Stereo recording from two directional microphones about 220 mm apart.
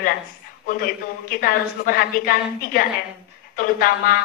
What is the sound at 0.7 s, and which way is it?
A woman's voice, 40° left (ahead or behind).